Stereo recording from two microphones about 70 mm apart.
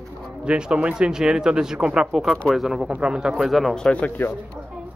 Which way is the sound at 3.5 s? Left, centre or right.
Centre.